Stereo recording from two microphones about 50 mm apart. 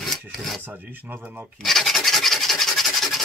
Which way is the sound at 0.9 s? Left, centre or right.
Right.